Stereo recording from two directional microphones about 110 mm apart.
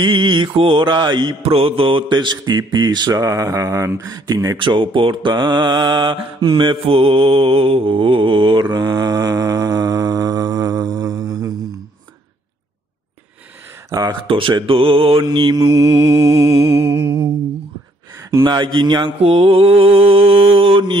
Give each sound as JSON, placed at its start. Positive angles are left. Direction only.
{"t": 0.0, "sound": "mantra", "side_deg": -45}
{"t": 1.4, "sound": "mantra", "side_deg": -60}
{"t": 3.1, "sound": "speech", "side_deg": -30}
{"t": 4.6, "sound": "mantra", "side_deg": -50}
{"t": 13.8, "sound": "speech", "side_deg": -35}
{"t": 14.2, "sound": "mantra", "side_deg": -50}
{"t": 15.2, "sound": "speech", "side_deg": -40}
{"t": 18.3, "sound": "speech", "side_deg": -40}
{"t": 19.2, "sound": "mantra", "side_deg": -55}